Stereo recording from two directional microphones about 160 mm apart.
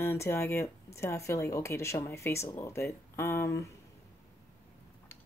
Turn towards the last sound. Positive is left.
turn(degrees=20)  # may be behind; listen again after turning